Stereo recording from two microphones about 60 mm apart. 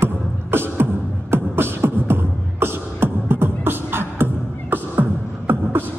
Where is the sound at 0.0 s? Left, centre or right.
Right.